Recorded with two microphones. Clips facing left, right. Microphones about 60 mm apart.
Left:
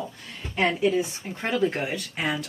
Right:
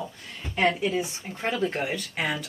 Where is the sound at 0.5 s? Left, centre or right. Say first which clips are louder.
Left 2 dB; centre.